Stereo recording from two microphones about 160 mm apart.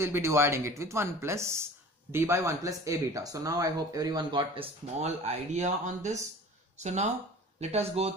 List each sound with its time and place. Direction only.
0.0 s speech: 15° right (ahead or behind)
5.0 s speech: 45° right (ahead or behind)